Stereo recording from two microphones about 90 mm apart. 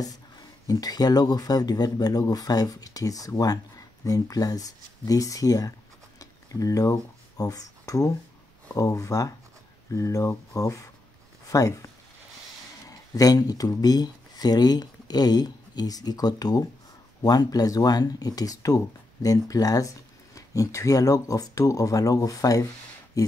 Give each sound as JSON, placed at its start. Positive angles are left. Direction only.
{"t": 0.0, "sound": "speech", "side_deg": 45}
{"t": 13.1, "sound": "speech", "side_deg": 45}